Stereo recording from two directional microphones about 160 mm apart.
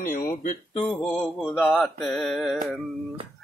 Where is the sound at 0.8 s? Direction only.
5° left (ahead or behind).